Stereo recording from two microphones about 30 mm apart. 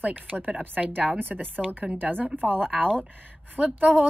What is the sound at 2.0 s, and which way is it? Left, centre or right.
Speech, right.